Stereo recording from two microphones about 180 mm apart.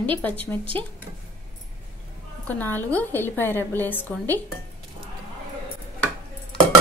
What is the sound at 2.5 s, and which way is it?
A woman's voice, 10° left (ahead or behind).